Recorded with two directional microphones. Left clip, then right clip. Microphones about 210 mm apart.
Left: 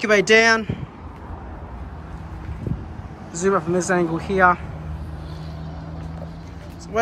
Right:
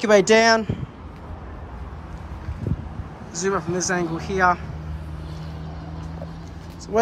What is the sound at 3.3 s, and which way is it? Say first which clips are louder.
Speech: left 4 dB; 5° right (ahead or behind).